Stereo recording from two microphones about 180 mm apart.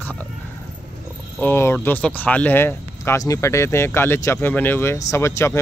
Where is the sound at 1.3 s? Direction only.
10° left (ahead or behind).